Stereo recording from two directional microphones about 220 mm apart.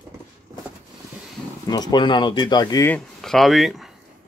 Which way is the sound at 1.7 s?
20° left (ahead or behind).